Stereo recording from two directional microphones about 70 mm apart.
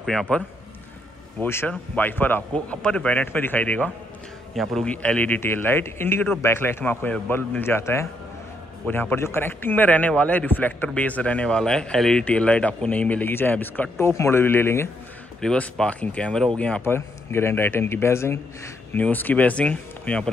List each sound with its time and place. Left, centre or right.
0.0 s speech: centre
1.4 s a man's voice: left
2.5 s a man's voice: centre
4.6 s a man's voice: centre
4.8 s a man's voice: centre; by 8.1 s left
8.8 s a man's voice: left
13.9 s a man's voice: left
15.4 s speech: centre
16.8 s a man's voice: left
18.9 s a man's voice: left